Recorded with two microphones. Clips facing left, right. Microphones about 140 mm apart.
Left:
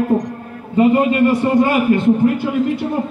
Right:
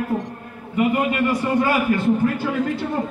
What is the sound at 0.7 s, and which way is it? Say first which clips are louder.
A man's voice: left 7 dB; 30° left (ahead or behind).